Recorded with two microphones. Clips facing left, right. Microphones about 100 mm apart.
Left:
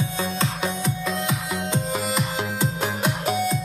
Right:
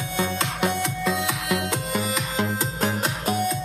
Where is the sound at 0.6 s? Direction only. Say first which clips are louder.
Right 2 dB; 85° right.